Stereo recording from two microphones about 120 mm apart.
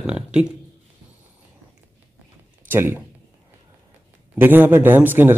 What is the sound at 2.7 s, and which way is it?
Speech, 20° right (ahead or behind).